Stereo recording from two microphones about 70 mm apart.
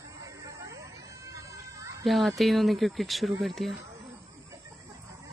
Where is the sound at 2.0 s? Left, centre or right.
Centre.